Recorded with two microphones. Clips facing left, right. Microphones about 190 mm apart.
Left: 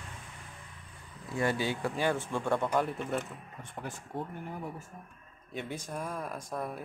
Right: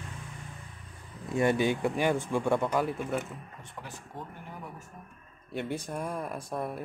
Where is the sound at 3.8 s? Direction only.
50° left (ahead or behind).